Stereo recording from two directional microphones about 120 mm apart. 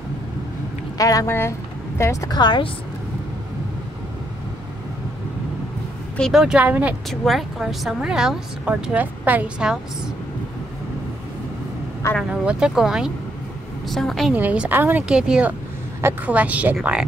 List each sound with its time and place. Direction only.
0.9 s speech: 30° left (ahead or behind)
2.3 s speech: 40° left (ahead or behind)
6.1 s speech: 5° left (ahead or behind)
6.4 s speech: 10° right (ahead or behind)
7.1 s speech: centre (ahead or behind)
12.2 s speech: 10° right (ahead or behind)
14.3 s speech: 10° right (ahead or behind)